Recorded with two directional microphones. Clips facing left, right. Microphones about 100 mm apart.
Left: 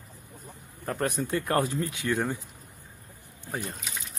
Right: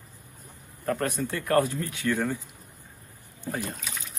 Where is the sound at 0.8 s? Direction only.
10° left (ahead or behind).